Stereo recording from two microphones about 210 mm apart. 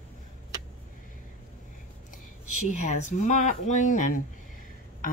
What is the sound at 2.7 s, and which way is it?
Speech, 35° left (ahead or behind).